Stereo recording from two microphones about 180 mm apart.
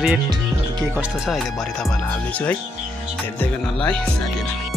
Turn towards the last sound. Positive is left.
turn(degrees=5)  # may be behind; listen again after turning